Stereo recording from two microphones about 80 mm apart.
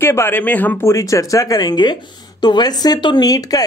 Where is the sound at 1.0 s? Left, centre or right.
Left.